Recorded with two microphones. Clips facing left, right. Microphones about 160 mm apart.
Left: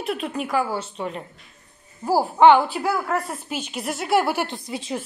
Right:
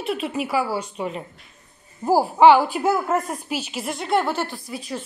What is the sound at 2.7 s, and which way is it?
Speech, 20° right (ahead or behind).